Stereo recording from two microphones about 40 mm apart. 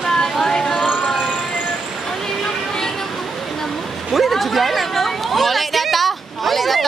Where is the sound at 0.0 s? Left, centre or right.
Centre.